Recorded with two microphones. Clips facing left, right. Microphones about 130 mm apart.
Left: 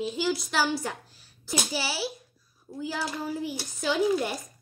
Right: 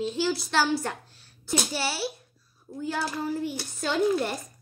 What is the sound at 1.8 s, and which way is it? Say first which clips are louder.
A woman's voice: right 1 dB; 60° right (ahead or behind).